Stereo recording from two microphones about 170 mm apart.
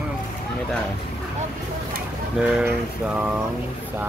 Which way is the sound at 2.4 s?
5° right (ahead or behind).